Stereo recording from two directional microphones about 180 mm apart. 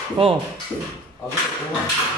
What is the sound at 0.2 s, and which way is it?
Speech, 30° right (ahead or behind).